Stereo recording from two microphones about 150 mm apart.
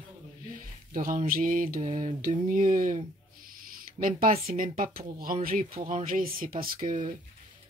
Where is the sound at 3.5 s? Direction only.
70° right (ahead or behind).